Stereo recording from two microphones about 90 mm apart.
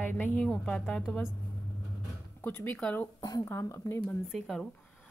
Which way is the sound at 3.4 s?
30° left (ahead or behind).